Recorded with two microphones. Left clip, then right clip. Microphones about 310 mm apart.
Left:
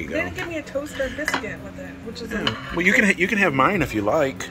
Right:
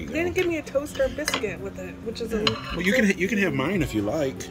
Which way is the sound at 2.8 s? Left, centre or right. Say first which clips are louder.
Left 7 dB; centre.